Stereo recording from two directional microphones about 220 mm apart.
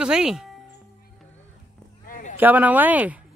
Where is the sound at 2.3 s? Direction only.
10° right (ahead or behind).